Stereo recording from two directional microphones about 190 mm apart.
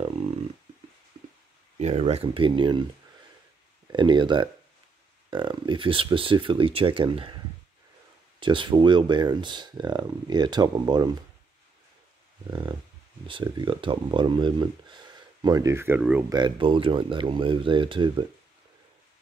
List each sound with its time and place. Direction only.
1.8 s speech: 35° right (ahead or behind)
8.4 s speech: 25° right (ahead or behind)
12.4 s speech: 25° right (ahead or behind); by 16.3 s 10° right (ahead or behind)
16.3 s speech: 25° right (ahead or behind)